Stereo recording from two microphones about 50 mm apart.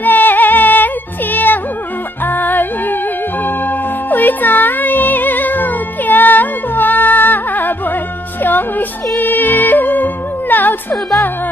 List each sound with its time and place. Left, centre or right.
0.0 s music: left